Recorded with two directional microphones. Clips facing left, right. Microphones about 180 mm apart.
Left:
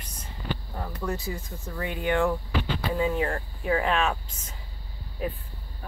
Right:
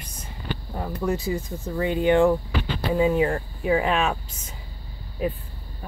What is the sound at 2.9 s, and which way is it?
Speech, 10° right (ahead or behind).